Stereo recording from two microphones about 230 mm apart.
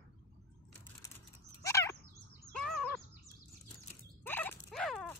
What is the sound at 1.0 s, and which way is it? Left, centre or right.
Mechanisms, centre.